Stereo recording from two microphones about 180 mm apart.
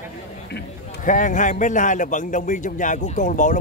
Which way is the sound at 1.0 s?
45° left (ahead or behind).